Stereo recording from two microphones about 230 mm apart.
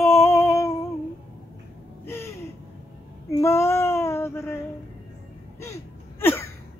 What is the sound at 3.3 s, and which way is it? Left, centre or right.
Child singing, centre.